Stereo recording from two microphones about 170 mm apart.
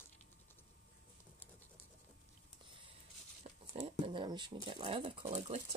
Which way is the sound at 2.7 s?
30° right (ahead or behind).